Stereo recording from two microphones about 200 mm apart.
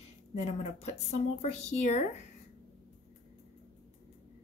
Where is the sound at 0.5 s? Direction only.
30° left (ahead or behind).